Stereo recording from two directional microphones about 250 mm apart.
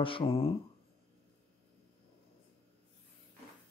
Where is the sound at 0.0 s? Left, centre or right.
Left.